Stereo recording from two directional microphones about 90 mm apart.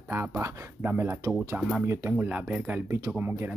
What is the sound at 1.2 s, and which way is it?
Speech, 35° right (ahead or behind).